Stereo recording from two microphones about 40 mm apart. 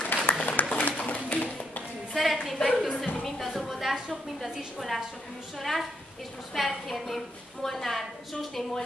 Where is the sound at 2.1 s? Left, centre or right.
Centre.